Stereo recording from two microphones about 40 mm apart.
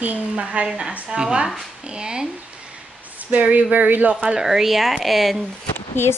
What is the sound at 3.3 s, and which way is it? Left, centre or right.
Speech, right.